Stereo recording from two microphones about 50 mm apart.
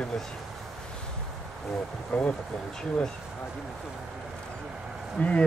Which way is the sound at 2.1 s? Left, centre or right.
Left.